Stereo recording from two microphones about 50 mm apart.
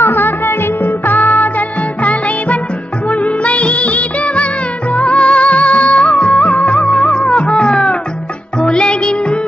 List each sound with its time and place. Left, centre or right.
0.0 s music: left
3.1 s music of bollywood: left
6.8 s music: centre